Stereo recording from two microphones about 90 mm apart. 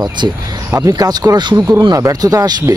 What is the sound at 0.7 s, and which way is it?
Speech, 40° right (ahead or behind).